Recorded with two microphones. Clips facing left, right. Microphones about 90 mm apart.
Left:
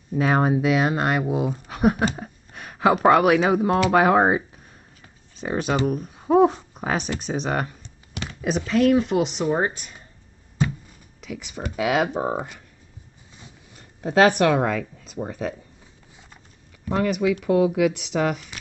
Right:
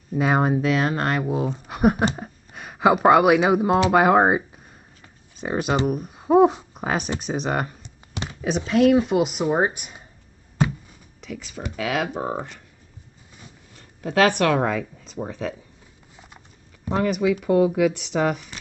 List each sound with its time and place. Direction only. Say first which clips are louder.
0.1 s speech: even; 5° right (ahead or behind)
0.6 s speech: left 1 dB; 10° left (ahead or behind)
1.7 s speech: right 2 dB; 5° right (ahead or behind)
11.1 s a sound: even; centre (ahead or behind)
11.7 s speech: left 4 dB; 15° left (ahead or behind)
13.7 s speech: left 2 dB; 20° left (ahead or behind)
14.6 s speech: even; 5° right (ahead or behind)
16.9 s speech: even; 5° right (ahead or behind)